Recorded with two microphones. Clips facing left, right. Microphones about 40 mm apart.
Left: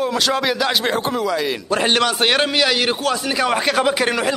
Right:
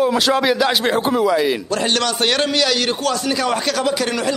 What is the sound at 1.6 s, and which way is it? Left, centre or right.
A man's voice, centre.